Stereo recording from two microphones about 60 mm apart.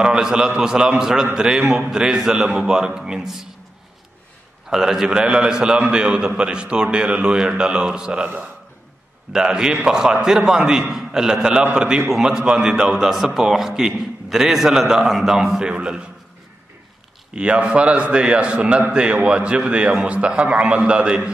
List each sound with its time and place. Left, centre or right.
0.0 s a man's voice: centre
4.6 s a man's voice: centre
9.3 s a man's voice: centre
17.4 s a man's voice: centre